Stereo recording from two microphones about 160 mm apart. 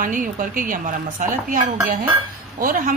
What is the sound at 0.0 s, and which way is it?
A woman's voice, 55° right (ahead or behind).